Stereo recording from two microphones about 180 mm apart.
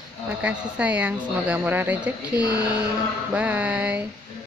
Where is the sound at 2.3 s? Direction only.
20° left (ahead or behind).